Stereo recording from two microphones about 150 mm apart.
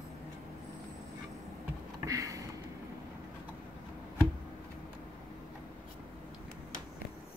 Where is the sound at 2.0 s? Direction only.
20° right (ahead or behind).